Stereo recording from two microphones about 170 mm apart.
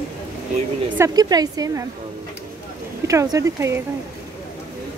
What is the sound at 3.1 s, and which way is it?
Speech, 20° right (ahead or behind).